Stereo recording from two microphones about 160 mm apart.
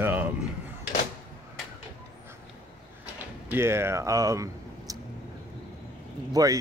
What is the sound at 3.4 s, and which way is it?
Speech, 15° right (ahead or behind).